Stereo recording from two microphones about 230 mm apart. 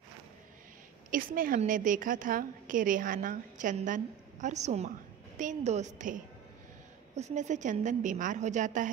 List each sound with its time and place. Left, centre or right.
1.1 s a woman's voice: right